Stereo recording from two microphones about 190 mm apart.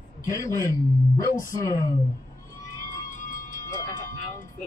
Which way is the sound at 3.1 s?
45° left (ahead or behind).